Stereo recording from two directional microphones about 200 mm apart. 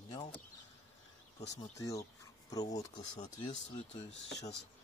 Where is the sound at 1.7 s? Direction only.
15° left (ahead or behind).